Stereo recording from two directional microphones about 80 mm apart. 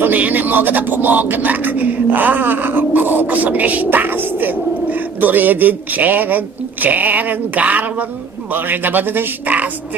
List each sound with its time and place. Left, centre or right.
0.0 s speech: right